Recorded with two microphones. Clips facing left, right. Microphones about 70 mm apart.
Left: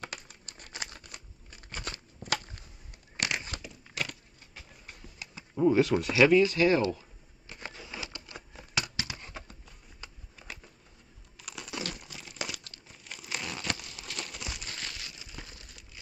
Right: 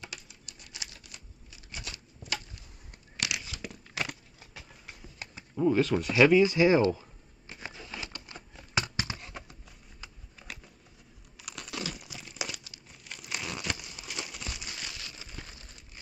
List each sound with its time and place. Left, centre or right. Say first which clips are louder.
0.0 s crumpling: left 3 dB; left
3.2 s crumpling: left 2 dB; left
5.5 s speech: left 2 dB; centre
6.4 s speech: right 2 dB; centre
6.8 s a sound: right 4 dB; right
7.7 s a sound: even; centre
8.7 s horse: right 3 dB; right
9.3 s a sound: even; centre
11.4 s crumpling: even; centre
14.7 s crumpling: left 1 dB; centre
15.4 s crumpling: even; centre